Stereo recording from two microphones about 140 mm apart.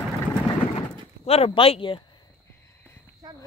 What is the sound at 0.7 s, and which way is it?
Door, 45° left (ahead or behind).